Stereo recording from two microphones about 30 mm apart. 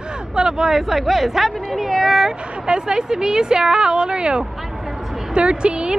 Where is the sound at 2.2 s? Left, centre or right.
Right.